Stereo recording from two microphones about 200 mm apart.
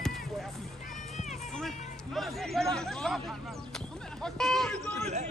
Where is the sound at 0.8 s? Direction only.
35° left (ahead or behind).